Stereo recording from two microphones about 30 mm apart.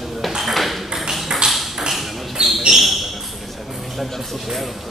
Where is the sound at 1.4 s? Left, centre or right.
Centre.